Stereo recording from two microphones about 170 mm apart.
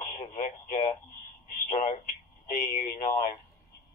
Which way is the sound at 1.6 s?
45° left (ahead or behind).